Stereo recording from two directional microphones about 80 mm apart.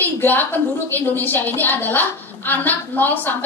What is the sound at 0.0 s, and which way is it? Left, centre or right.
A woman's voice, left.